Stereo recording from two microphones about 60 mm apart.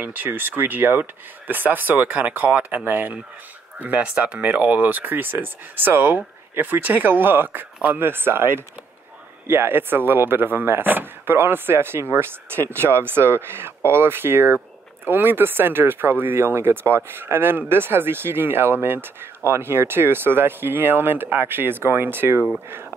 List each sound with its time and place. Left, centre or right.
0.0 s speech: right